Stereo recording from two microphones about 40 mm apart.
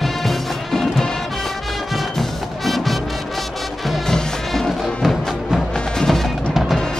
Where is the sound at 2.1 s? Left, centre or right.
Centre.